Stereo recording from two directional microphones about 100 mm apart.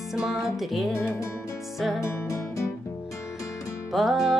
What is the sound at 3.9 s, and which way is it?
Music, centre (ahead or behind).